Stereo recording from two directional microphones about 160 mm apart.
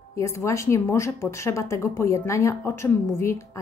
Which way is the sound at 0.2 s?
20° left (ahead or behind).